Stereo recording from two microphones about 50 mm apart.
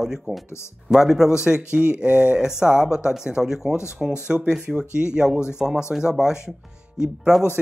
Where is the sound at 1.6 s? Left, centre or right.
Right.